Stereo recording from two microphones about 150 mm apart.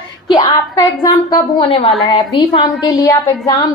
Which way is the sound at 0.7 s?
25° left (ahead or behind).